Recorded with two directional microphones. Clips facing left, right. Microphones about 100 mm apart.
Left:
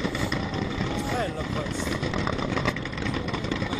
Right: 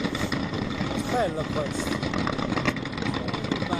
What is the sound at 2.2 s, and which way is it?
Vehicle, 10° right (ahead or behind).